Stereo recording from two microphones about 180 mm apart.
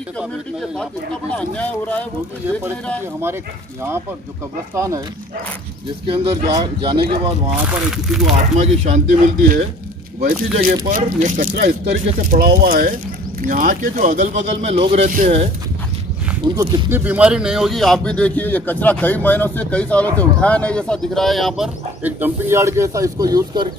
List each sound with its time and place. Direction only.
0.2 s a man's voice: centre (ahead or behind)
4.7 s speech: 15° right (ahead or behind)
6.0 s speech: 30° right (ahead or behind)
8.4 s speech: 40° right (ahead or behind)
10.2 s speech: 55° right (ahead or behind); by 15.5 s 30° right (ahead or behind)
16.5 s speech: 25° right (ahead or behind)
16.9 s a man's voice: 10° right (ahead or behind)